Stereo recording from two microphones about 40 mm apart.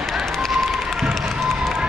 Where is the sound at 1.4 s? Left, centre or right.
Centre.